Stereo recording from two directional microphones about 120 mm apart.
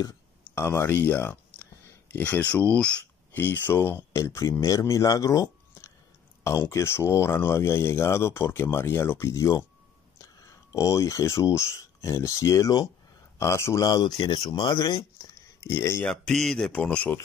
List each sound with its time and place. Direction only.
0.6 s a man's voice: 20° left (ahead or behind)
15.2 s a sound: 25° left (ahead or behind)
16.1 s speech: 5° left (ahead or behind)